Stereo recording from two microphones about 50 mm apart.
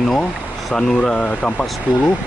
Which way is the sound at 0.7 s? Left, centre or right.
Centre.